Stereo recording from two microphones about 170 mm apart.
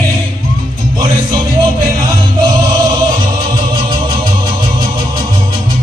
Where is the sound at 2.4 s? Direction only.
25° right (ahead or behind).